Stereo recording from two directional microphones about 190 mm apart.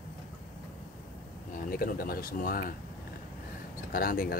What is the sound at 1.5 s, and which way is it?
Speech, 50° left (ahead or behind).